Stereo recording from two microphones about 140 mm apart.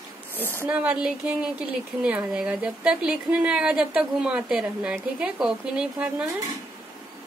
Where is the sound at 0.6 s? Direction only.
10° right (ahead or behind).